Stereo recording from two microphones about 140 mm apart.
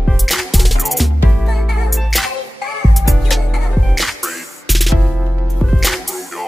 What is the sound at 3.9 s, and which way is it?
Music, centre (ahead or behind).